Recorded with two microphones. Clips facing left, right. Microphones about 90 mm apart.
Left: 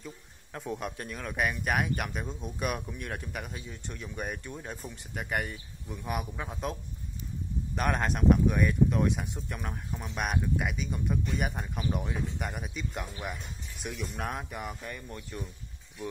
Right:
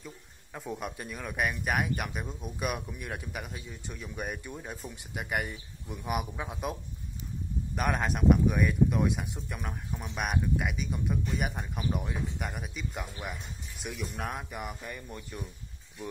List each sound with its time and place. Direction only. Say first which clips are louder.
0.0 s speech: left 2 dB; 5° right (ahead or behind)